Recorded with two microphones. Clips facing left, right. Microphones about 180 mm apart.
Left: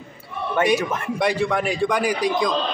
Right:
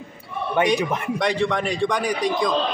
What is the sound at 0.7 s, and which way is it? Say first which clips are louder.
Speech: right 1 dB; 15° right (ahead or behind).